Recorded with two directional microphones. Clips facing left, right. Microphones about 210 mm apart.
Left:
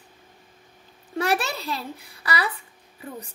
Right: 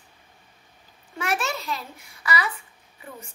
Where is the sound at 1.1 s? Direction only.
35° left (ahead or behind).